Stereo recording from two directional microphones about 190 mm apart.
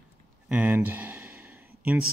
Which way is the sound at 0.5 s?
10° right (ahead or behind).